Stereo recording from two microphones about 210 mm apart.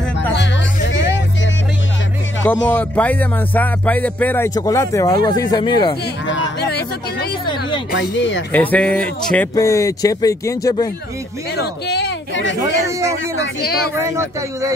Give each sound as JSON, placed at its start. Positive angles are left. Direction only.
{"t": 0.3, "sound": "music", "side_deg": 55}
{"t": 2.4, "sound": "speech", "side_deg": 10}
{"t": 6.2, "sound": "a sound", "side_deg": 60}
{"t": 7.9, "sound": "speech", "side_deg": 55}
{"t": 8.5, "sound": "speech", "side_deg": 5}
{"t": 11.5, "sound": "speech", "side_deg": 50}
{"t": 13.6, "sound": "speech", "side_deg": 50}
{"t": 13.9, "sound": "speech", "side_deg": -15}